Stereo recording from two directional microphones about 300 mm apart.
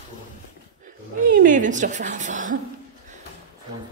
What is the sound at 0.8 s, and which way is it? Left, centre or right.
Speech, right.